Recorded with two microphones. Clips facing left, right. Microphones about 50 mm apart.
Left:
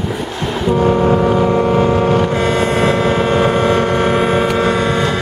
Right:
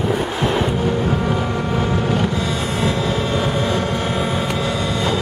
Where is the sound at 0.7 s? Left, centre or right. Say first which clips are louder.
Left 7 dB; left.